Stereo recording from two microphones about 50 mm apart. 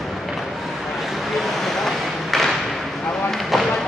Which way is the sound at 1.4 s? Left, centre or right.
Centre.